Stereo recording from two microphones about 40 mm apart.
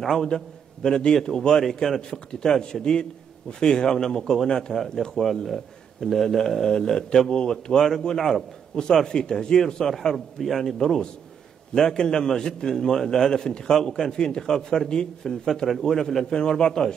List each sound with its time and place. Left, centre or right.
0.8 s a man's voice: centre
5.2 s a man's voice: centre
10.4 s a man's voice: centre
10.8 s a man's voice: centre